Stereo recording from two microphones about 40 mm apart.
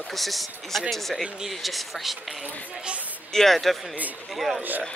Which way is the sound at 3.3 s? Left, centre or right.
Centre.